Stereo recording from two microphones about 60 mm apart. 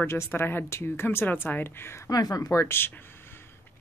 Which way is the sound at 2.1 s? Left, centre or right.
Left.